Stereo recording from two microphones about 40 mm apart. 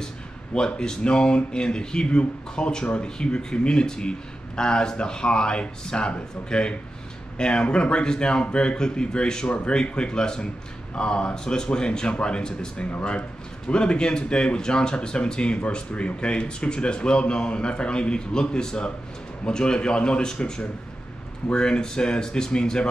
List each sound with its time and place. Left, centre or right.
0.6 s speech: centre